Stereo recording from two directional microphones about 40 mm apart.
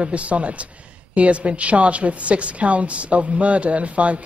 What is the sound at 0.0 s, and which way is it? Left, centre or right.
A woman's voice, right.